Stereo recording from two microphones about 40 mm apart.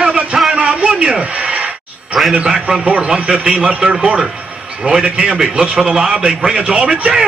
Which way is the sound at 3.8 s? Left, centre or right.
Centre.